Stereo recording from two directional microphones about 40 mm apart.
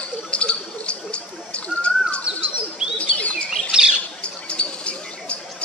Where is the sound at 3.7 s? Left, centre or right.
Right.